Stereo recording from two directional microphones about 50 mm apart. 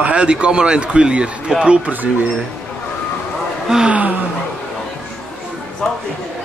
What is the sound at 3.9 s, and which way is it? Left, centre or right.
Speech, right.